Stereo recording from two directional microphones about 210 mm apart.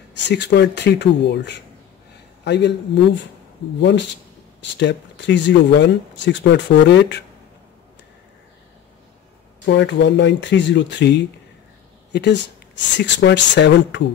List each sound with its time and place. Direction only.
0.1 s speech: 55° left (ahead or behind)
4.6 s speech: 55° left (ahead or behind)
9.7 s speech: 55° left (ahead or behind)